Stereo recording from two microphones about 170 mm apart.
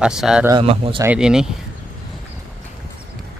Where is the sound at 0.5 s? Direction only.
30° right (ahead or behind).